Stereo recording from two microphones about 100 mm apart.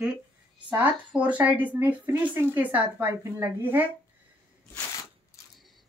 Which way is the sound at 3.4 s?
15° right (ahead or behind).